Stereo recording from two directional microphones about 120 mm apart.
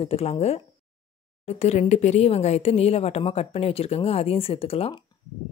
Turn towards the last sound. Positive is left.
turn(degrees=55)  # may be behind; listen again after turning